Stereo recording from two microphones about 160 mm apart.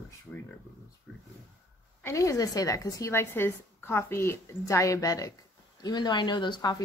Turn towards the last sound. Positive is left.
turn(degrees=25)  # may be behind; listen again after turning